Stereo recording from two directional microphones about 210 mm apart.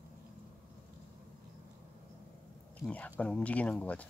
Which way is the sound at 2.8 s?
5° left (ahead or behind).